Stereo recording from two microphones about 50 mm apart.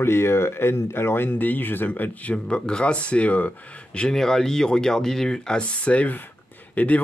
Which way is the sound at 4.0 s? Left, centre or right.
Centre.